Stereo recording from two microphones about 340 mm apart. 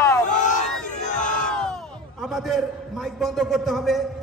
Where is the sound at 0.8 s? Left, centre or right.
Left.